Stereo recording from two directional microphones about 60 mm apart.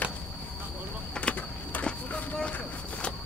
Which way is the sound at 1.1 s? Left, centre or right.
Centre.